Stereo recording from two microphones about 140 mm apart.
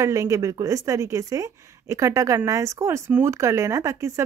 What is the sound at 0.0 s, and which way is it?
A woman's voice, 25° right (ahead or behind).